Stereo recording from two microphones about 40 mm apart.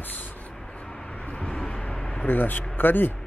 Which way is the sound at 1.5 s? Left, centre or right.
Left.